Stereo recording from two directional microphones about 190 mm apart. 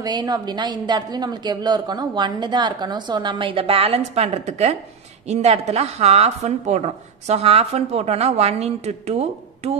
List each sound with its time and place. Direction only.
0.0 s a woman's voice: 20° right (ahead or behind)